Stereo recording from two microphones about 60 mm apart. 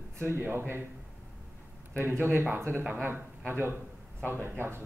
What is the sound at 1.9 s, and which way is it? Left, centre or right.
A man's voice, right.